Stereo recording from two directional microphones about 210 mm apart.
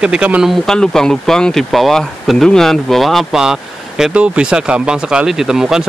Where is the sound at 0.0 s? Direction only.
5° right (ahead or behind).